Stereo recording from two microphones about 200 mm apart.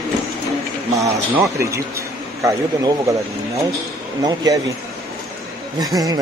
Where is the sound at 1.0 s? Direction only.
15° right (ahead or behind).